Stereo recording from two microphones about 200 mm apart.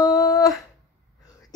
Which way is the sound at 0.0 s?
20° left (ahead or behind).